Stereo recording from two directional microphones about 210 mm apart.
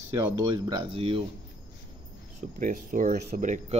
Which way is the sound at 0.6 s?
25° right (ahead or behind).